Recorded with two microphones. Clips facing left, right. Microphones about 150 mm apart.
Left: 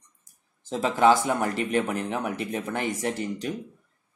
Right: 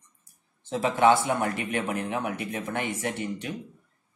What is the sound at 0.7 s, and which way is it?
Speech, 35° left (ahead or behind).